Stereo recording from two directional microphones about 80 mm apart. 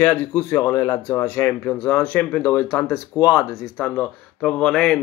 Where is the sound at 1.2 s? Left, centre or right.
Left.